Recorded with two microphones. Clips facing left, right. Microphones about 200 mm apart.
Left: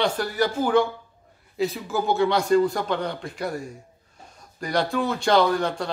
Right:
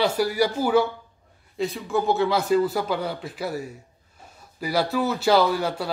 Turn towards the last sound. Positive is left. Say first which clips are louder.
# left 1 dB
turn(degrees=-5)  # may be behind; listen again after turning